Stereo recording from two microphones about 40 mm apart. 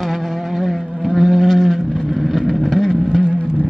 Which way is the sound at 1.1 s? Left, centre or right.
Centre.